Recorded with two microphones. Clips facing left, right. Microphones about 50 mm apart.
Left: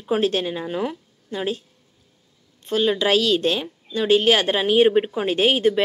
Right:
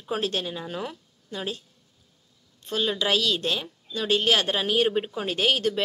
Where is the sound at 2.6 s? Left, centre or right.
Left.